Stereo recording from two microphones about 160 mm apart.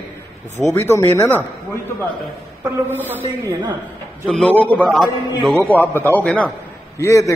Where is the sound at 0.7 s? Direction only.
15° left (ahead or behind).